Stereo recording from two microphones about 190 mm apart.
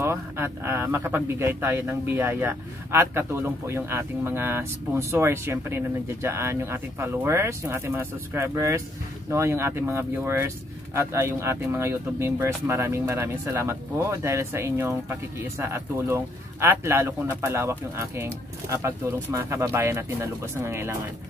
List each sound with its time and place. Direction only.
0.0 s speech: 10° right (ahead or behind)